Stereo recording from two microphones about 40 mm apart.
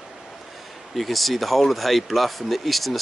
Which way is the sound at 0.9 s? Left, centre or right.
Centre.